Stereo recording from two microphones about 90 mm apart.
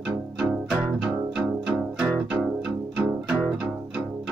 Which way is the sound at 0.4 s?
10° right (ahead or behind).